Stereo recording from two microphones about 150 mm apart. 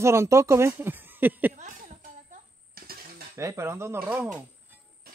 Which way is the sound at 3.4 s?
20° right (ahead or behind).